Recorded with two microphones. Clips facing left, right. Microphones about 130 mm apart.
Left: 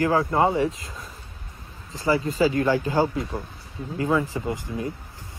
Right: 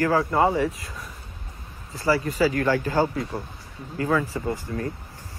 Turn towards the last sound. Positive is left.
turn(degrees=20)  # may be behind; listen again after turning